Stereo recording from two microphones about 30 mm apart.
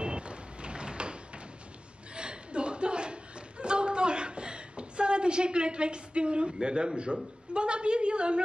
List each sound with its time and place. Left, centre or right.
0.0 s vehicle: right
2.1 s a sound: right
7.1 s a woman's voice: right